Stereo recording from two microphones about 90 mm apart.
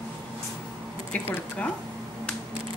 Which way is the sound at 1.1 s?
15° left (ahead or behind).